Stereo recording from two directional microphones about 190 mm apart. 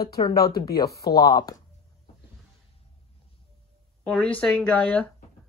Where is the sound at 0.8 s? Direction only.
55° left (ahead or behind).